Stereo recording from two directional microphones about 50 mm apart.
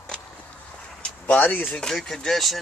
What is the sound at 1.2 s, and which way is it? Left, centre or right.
Speech, left.